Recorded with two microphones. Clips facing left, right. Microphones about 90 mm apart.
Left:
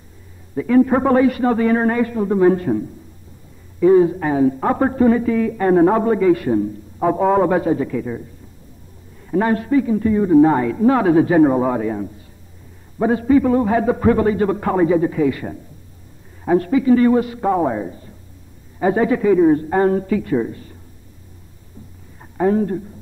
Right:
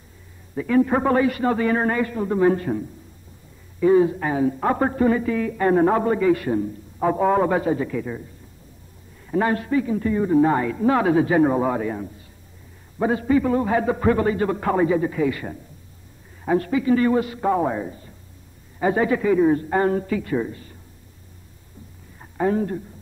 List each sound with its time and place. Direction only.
0.8 s a man's voice: 20° left (ahead or behind)
3.8 s a man's voice: 5° left (ahead or behind)
4.1 s a man's voice: 20° left (ahead or behind)
9.4 s a man's voice: 20° left (ahead or behind)
10.5 s a man's voice: 20° left (ahead or behind)
19.3 s a man's voice: 5° left (ahead or behind)
22.4 s speech: 5° left (ahead or behind)